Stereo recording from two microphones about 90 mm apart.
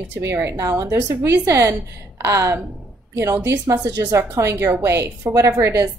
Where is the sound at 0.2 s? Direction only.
35° right (ahead or behind).